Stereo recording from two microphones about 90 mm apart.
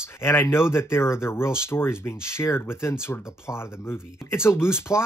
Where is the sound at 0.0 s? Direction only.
30° left (ahead or behind).